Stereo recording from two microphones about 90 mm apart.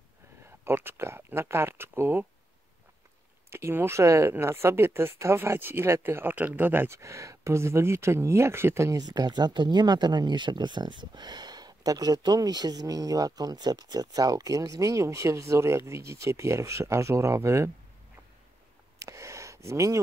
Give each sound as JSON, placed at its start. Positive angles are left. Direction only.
{"t": 0.5, "sound": "speech", "side_deg": -25}
{"t": 3.4, "sound": "speech", "side_deg": -30}
{"t": 7.0, "sound": "speech", "side_deg": -35}
{"t": 9.0, "sound": "speech", "side_deg": -50}
{"t": 18.9, "sound": "a sound", "side_deg": -35}